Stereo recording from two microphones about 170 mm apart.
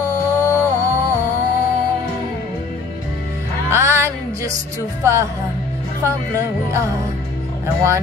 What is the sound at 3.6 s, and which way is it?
Music, 15° right (ahead or behind).